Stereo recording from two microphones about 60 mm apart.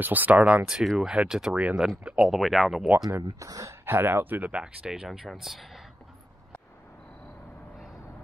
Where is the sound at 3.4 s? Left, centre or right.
Right.